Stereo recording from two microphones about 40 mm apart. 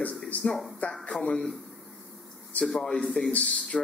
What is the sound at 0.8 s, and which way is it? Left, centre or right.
Speech, left.